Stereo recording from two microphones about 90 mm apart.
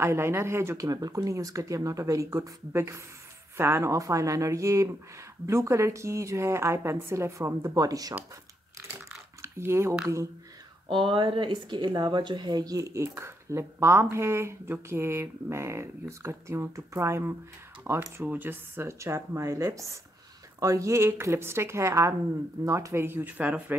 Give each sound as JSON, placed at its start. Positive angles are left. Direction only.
{"t": 0.0, "sound": "speech", "side_deg": -30}
{"t": 0.8, "sound": "speech", "side_deg": -45}
{"t": 9.4, "sound": "speech", "side_deg": -30}
{"t": 10.9, "sound": "speech", "side_deg": -70}